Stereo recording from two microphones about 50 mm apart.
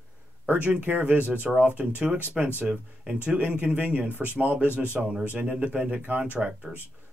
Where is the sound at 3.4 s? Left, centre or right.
Right.